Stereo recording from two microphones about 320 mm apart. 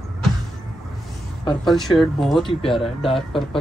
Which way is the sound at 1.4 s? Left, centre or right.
Centre.